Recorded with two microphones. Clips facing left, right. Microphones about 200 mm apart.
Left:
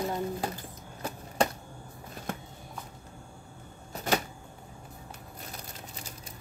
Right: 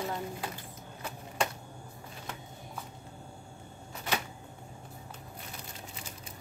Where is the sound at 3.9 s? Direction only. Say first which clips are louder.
Left 6 dB; 40° left (ahead or behind).